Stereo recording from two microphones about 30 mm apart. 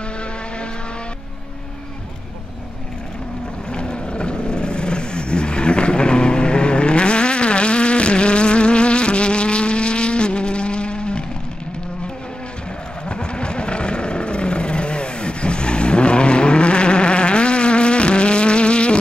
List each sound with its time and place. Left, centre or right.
3.7 s vehicle: left
13.1 s vehicle: left